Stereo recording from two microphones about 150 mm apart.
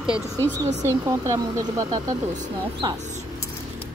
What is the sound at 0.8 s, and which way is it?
Speech, 20° right (ahead or behind).